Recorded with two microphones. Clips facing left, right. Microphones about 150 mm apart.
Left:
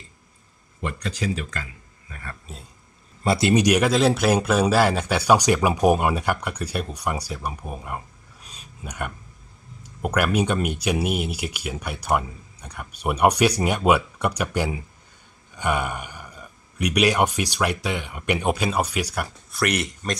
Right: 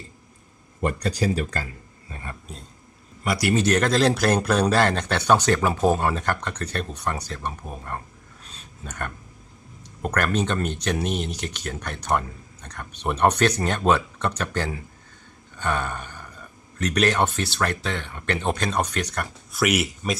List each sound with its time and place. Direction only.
0.8 s speech: 40° right (ahead or behind)
2.5 s speech: centre (ahead or behind)
3.3 s speech: 20° left (ahead or behind)
8.5 s a sound: 10° left (ahead or behind)
10.0 s speech: 10° left (ahead or behind)
19.5 s speech: 5° right (ahead or behind)